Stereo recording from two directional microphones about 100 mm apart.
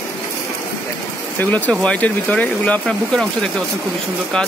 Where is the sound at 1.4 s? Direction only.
15° left (ahead or behind).